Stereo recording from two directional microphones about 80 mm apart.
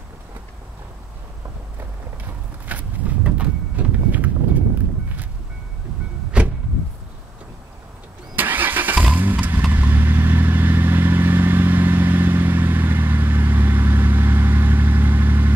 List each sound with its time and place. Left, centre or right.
2.6 s vehicle: centre
6.4 s vehicle: centre
8.4 s vehicle: right